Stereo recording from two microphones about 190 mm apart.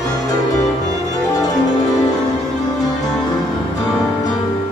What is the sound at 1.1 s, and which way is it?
Music, 20° left (ahead or behind).